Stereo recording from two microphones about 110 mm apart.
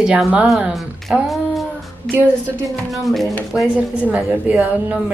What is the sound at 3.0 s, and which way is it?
A woman's voice, centre (ahead or behind).